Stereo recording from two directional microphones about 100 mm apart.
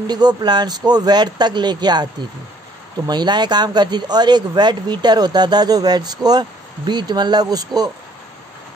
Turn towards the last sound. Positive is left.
turn(degrees=-40)  # may be behind; listen again after turning